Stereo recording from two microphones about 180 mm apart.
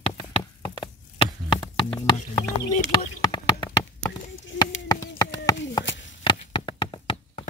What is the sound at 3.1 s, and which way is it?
Clip-clop, 25° left (ahead or behind).